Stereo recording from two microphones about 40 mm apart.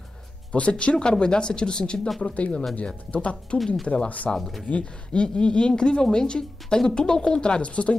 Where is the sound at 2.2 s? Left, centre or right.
Left.